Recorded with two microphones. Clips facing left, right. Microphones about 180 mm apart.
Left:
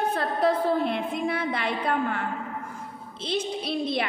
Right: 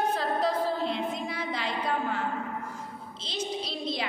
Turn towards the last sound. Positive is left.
turn(degrees=60)  # may be behind; listen again after turning